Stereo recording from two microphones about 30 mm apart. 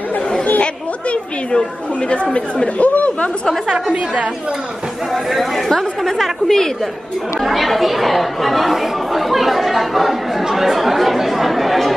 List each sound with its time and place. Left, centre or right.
2.0 s speech: left
2.9 s speech: left
3.9 s a woman's voice: right
5.3 s speech: centre
10.5 s chatter: centre